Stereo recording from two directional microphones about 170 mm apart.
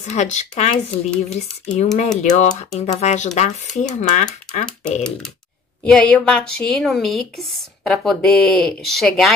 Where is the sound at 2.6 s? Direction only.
40° left (ahead or behind).